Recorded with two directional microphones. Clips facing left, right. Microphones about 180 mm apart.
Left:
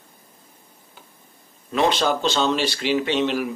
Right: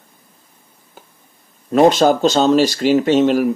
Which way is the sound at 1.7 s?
45° right (ahead or behind).